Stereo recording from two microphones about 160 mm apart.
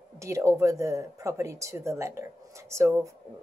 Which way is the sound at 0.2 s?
20° right (ahead or behind).